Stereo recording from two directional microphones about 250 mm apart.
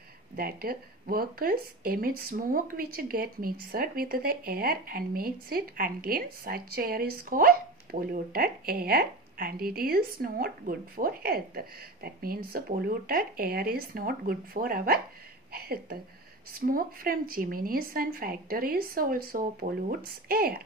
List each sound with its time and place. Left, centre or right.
0.4 s speech: right